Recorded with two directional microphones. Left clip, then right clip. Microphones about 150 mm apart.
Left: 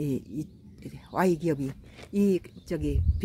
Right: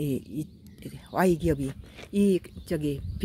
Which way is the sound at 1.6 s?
70° right (ahead or behind).